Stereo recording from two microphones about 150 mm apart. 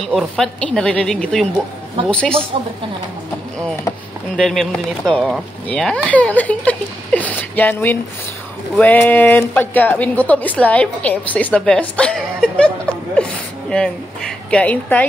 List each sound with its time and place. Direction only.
0.0 s speech: centre (ahead or behind)
2.5 s a woman's voice: 40° right (ahead or behind)
4.4 s a woman's voice: centre (ahead or behind)
13.1 s a sound: 5° left (ahead or behind)
14.5 s a woman's voice: 10° left (ahead or behind)